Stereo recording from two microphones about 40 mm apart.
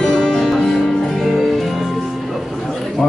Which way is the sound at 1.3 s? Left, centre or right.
Centre.